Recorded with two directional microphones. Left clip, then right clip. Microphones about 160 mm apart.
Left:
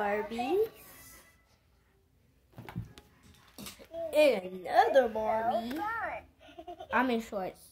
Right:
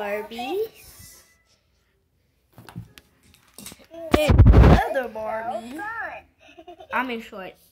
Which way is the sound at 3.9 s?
80° right.